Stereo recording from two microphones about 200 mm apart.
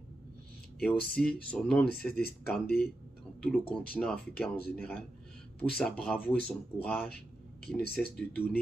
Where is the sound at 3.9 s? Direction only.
5° left (ahead or behind).